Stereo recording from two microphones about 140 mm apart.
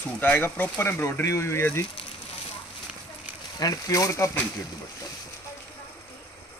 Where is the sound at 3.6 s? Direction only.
25° left (ahead or behind).